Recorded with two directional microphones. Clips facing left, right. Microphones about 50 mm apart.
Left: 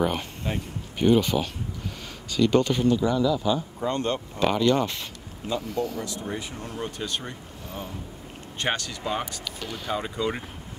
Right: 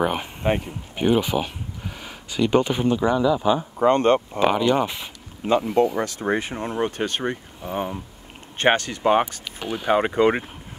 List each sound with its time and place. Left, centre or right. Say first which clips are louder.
0.0 s a sound: right 3 dB; centre
0.4 s speech: right 8 dB; right
0.9 s speech: even; centre
3.8 s speech: right 13 dB; right
4.4 s speech: right 3 dB; centre
5.9 s speech: right 8 dB; right
9.4 s speech: right 5 dB; right
9.8 s speech: right 10 dB; right